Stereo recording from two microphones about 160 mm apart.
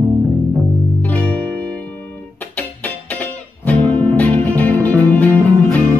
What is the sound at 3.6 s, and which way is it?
Music, 10° left (ahead or behind).